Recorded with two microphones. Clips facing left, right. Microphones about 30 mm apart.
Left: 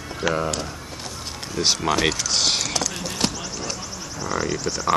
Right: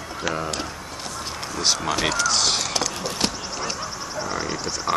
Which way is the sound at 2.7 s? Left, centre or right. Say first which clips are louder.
Right 1 dB; centre.